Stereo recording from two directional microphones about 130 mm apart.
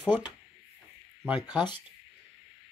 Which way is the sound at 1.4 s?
35° left (ahead or behind).